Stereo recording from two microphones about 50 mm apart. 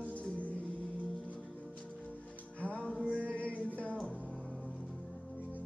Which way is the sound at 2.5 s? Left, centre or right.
Left.